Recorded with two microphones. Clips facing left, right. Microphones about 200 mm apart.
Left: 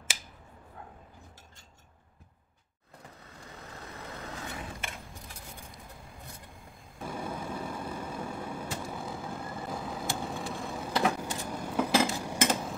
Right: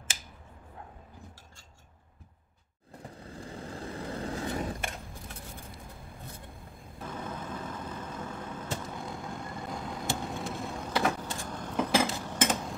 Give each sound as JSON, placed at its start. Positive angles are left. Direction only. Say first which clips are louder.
{"t": 3.2, "sound": "vehicle", "louder": "right 9 dB", "side_deg": -30}
{"t": 7.0, "sound": "vehicle", "louder": "left 2 dB", "side_deg": 10}